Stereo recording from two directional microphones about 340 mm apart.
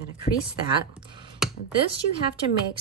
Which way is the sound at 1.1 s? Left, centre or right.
Centre.